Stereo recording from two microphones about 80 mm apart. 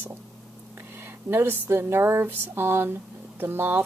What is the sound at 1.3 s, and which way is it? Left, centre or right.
A woman's voice, right.